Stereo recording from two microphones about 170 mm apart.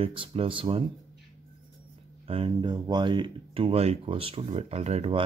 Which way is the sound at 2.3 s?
30° right (ahead or behind).